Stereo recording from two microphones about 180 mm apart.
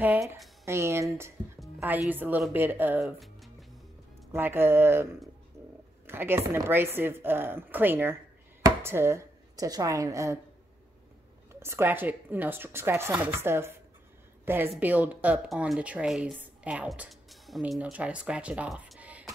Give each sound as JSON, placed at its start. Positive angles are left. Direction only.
{"t": 0.0, "sound": "speech", "side_deg": -10}
{"t": 4.3, "sound": "speech", "side_deg": -10}
{"t": 11.6, "sound": "a woman's voice", "side_deg": -15}